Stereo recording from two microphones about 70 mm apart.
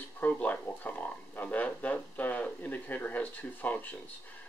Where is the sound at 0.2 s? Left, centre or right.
Left.